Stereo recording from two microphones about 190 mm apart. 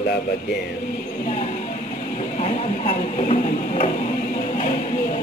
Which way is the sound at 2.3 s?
40° left (ahead or behind).